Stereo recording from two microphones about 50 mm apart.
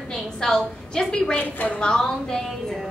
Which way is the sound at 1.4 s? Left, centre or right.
Left.